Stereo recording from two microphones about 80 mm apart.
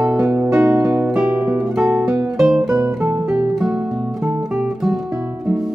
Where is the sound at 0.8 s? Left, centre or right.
Right.